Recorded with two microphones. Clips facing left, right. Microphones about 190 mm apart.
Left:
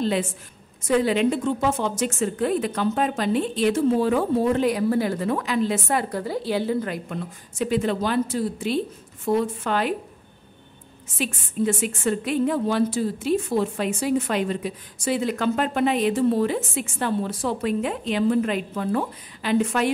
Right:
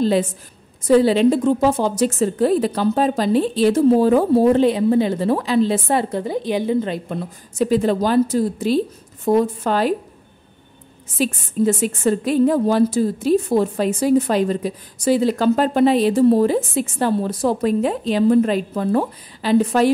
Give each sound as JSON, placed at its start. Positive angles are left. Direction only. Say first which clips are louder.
{"t": 0.0, "sound": "a woman's voice", "louder": "right 6 dB", "side_deg": -35}
{"t": 7.5, "sound": "a woman's voice", "louder": "right 6 dB", "side_deg": -40}
{"t": 11.1, "sound": "a woman's voice", "louder": "right 6 dB", "side_deg": -35}